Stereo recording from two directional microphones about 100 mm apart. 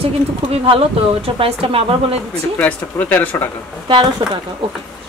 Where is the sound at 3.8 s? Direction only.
55° right (ahead or behind).